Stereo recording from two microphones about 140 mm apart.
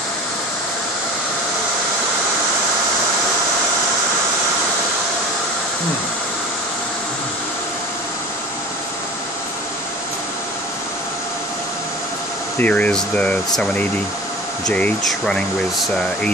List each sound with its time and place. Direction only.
12.5 s speech: 10° left (ahead or behind)